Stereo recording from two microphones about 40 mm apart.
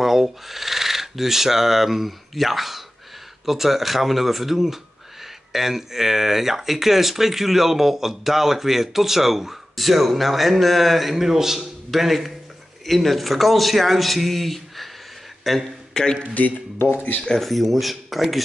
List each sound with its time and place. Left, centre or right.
0.0 s a sound: centre
3.4 s speech: centre
15.9 s speech: centre
16.4 s speech: left
17.4 s speech: centre